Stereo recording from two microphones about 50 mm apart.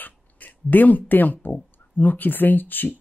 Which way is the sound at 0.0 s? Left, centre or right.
Left.